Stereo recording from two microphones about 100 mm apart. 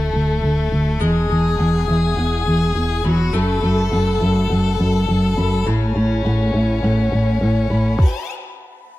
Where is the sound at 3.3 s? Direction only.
25° left (ahead or behind).